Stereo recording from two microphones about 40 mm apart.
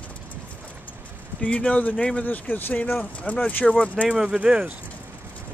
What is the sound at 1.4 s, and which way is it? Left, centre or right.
Speech, left.